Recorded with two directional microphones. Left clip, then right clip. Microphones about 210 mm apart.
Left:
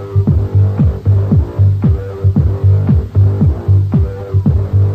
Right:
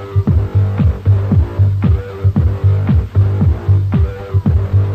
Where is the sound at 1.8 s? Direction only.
30° left (ahead or behind).